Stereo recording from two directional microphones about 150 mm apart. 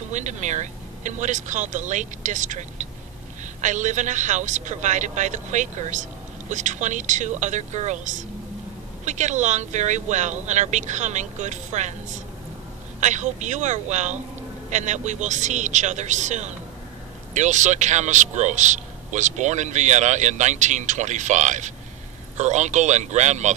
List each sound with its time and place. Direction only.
0.1 s a man's voice: 55° right (ahead or behind)